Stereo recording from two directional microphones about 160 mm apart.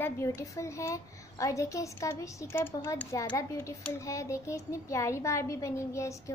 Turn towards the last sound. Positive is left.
turn(degrees=20)  # may be behind; listen again after turning